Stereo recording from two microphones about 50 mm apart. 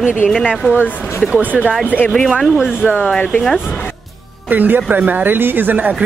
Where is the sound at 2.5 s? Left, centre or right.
Centre.